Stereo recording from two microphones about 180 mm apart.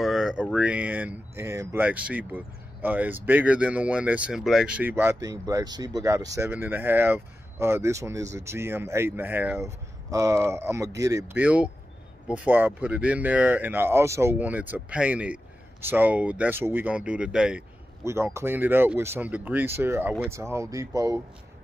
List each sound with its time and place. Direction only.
0.0 s speech: centre (ahead or behind)
18.0 s speech: 15° right (ahead or behind)